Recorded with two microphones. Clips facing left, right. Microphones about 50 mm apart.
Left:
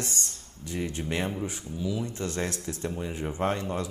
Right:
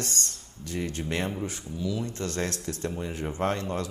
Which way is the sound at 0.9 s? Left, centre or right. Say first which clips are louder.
Even; centre.